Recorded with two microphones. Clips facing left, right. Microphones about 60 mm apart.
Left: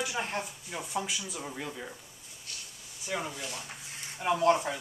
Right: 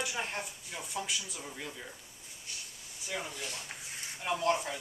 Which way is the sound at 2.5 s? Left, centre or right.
Centre.